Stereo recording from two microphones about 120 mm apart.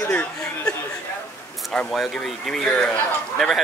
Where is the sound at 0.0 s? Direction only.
15° left (ahead or behind).